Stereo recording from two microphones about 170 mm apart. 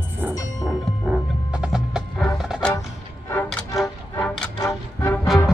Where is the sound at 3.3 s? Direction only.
10° left (ahead or behind).